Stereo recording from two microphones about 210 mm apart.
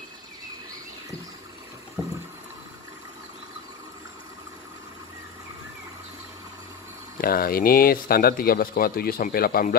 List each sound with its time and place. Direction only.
7.2 s speech: 45° left (ahead or behind)